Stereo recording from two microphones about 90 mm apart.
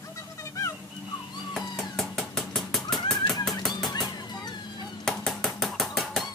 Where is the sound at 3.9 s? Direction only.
45° left (ahead or behind).